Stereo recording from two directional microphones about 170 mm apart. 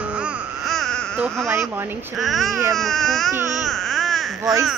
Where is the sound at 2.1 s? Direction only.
Centre (ahead or behind).